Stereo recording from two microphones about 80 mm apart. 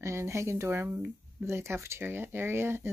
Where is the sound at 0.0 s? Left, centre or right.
Right.